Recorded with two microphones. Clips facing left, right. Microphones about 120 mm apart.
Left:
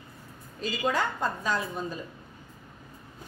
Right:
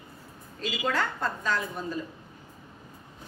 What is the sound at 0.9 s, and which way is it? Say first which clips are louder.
Speech: right 1 dB; 15° left (ahead or behind).